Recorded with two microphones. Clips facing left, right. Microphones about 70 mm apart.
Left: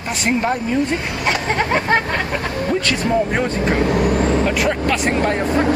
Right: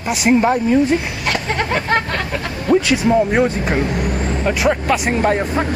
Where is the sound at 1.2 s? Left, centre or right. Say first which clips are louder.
Left 1 dB; centre.